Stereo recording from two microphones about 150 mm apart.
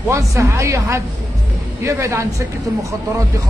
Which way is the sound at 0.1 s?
20° right (ahead or behind).